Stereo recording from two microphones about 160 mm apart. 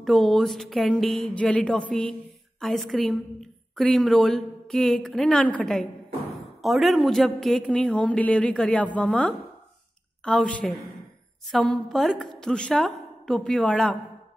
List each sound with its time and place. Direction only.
0.0 s a woman's voice: centre (ahead or behind)